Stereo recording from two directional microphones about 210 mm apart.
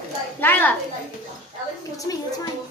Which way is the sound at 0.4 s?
10° left (ahead or behind).